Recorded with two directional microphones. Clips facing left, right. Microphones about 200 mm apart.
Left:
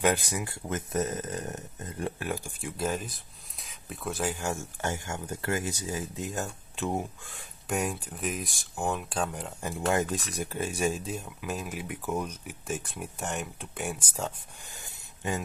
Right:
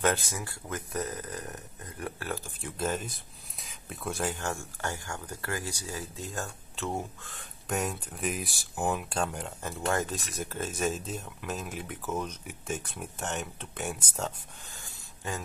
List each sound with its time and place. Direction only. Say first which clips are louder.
0.0 s speech: left 2 dB; 15° left (ahead or behind)
4.4 s speech: left 2 dB; 20° left (ahead or behind)
7.6 s speech: left 1 dB; 5° left (ahead or behind)
9.6 s speech: left 3 dB; 15° left (ahead or behind)
14.8 s a sound: left 6 dB; 20° left (ahead or behind)